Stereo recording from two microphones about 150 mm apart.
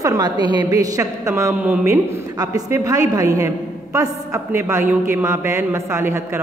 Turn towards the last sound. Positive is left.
turn(degrees=-15)  # may be behind; listen again after turning